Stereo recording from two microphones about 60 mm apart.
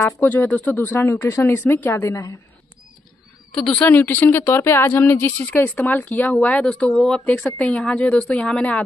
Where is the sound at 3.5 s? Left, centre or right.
Centre.